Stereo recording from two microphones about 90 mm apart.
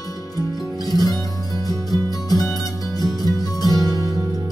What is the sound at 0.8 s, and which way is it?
Music, 45° left (ahead or behind).